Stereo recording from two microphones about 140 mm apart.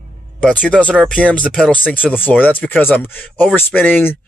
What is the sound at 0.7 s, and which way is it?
Speech, 10° left (ahead or behind).